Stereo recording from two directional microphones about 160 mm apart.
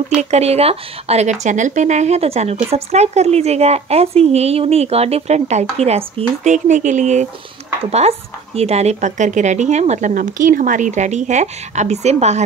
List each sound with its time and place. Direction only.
0.1 s speech: 45° right (ahead or behind)